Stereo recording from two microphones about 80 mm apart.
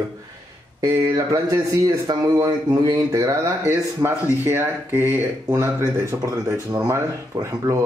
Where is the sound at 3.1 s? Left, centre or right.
Right.